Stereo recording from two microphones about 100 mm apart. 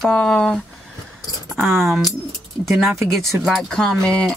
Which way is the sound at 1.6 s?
25° right (ahead or behind).